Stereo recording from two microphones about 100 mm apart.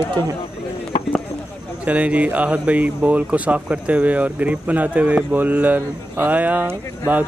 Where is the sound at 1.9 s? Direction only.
15° right (ahead or behind).